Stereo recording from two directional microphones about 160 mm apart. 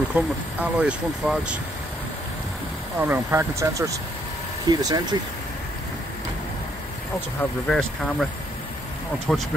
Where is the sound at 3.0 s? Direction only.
15° right (ahead or behind).